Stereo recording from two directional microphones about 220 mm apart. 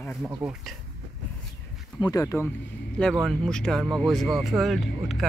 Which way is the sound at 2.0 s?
15° left (ahead or behind).